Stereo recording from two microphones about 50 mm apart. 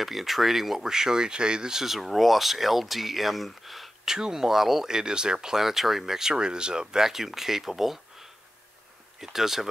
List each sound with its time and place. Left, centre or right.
0.0 s speech: centre